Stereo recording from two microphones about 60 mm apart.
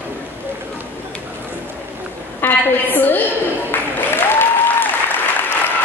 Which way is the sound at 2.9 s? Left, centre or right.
Left.